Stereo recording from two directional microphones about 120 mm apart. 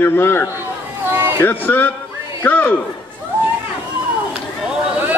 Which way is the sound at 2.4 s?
15° left (ahead or behind).